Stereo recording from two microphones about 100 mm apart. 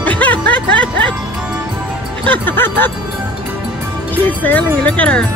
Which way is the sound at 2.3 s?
20° left (ahead or behind).